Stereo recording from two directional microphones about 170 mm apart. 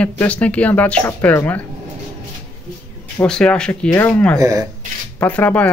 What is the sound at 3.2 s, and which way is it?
Speech, 5° left (ahead or behind).